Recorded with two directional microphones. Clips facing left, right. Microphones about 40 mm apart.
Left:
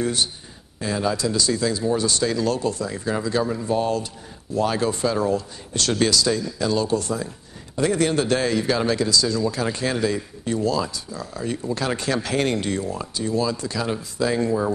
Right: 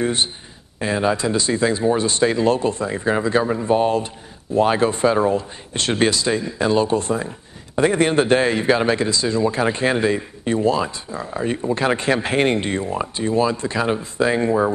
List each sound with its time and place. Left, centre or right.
0.0 s speech: right